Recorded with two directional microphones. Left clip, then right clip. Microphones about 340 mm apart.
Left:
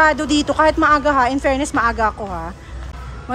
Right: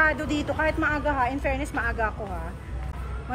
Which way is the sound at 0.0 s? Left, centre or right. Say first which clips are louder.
Left 9 dB; centre.